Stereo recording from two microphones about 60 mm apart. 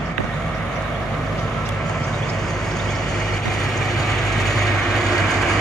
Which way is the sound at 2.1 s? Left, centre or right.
Centre.